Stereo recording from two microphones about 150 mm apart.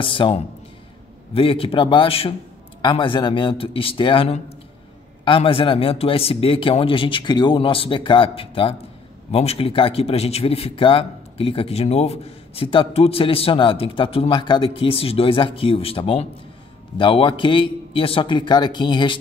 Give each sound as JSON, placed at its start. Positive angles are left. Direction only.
{"t": 0.0, "sound": "a man's voice", "side_deg": 35}